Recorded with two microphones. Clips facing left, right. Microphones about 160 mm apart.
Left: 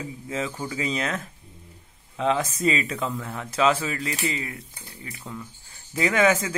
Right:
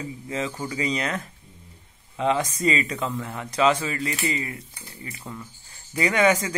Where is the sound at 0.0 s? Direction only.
5° left (ahead or behind).